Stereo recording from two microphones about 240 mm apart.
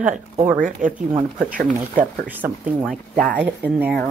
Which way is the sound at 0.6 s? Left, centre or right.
Right.